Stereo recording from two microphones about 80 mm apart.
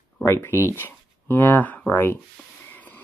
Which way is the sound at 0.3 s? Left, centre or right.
Left.